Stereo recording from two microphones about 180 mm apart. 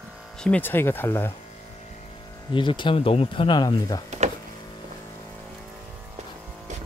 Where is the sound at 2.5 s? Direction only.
25° left (ahead or behind).